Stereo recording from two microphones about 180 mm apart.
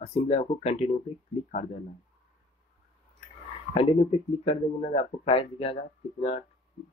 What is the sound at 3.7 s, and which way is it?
Speech, 35° left (ahead or behind).